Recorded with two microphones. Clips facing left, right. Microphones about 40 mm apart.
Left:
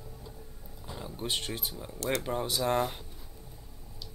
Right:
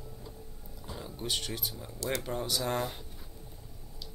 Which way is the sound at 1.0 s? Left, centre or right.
Centre.